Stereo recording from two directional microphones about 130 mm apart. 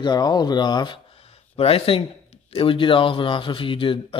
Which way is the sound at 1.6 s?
45° left (ahead or behind).